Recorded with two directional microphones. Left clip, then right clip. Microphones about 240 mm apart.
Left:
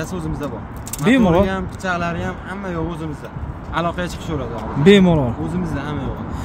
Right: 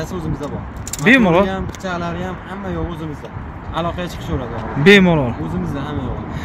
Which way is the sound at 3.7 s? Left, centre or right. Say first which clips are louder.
Left 1 dB; centre.